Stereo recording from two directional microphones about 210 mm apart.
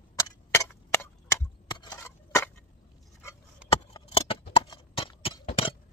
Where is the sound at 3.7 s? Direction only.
25° left (ahead or behind).